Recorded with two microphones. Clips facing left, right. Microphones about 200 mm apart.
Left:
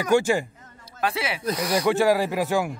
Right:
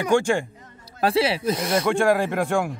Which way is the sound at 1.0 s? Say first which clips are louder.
Right 6 dB; 30° right (ahead or behind).